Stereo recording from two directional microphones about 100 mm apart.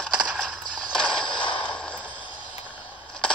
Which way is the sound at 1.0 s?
50° left (ahead or behind).